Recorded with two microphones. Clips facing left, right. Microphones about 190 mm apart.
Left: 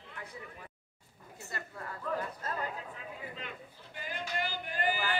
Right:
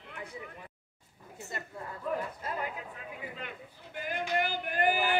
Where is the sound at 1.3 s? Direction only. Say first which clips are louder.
Right 2 dB; 20° right (ahead or behind).